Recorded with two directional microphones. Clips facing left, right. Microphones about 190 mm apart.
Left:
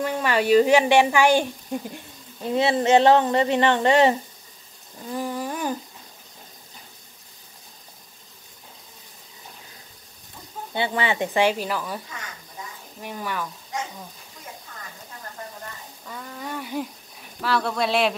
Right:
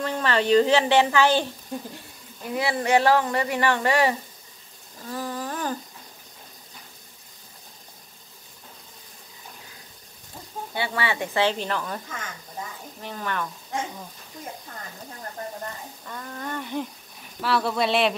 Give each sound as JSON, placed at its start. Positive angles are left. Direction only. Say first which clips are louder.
{"t": 0.0, "sound": "a woman's voice", "louder": "left 1 dB", "side_deg": 10}
{"t": 2.4, "sound": "speech", "louder": "left 5 dB", "side_deg": 25}
{"t": 5.1, "sound": "a sound", "louder": "left 3 dB", "side_deg": 15}
{"t": 10.7, "sound": "a woman's voice", "louder": "left 3 dB", "side_deg": 20}
{"t": 13.0, "sound": "a woman's voice", "louder": "even", "side_deg": 10}
{"t": 16.1, "sound": "speech", "louder": "even", "side_deg": 5}